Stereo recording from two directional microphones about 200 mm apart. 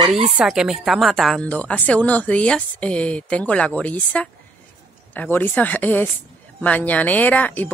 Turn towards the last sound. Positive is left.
turn(degrees=10)  # may be behind; listen again after turning